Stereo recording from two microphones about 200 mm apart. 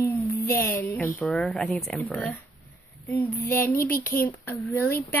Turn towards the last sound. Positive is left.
turn(degrees=10)  # may be behind; listen again after turning